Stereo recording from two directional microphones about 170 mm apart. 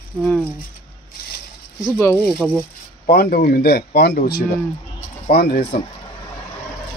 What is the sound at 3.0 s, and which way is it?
Speech, 60° left (ahead or behind).